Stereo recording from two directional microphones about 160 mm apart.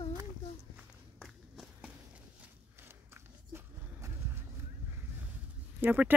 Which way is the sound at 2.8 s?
15° right (ahead or behind).